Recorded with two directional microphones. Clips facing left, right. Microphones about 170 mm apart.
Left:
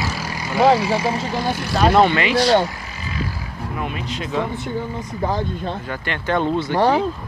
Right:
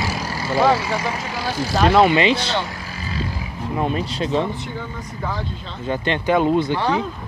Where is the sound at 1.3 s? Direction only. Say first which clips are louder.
Left 2 dB; 55° left (ahead or behind).